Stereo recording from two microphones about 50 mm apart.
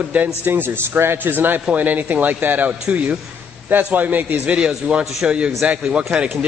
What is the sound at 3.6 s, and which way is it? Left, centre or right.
Speech, right.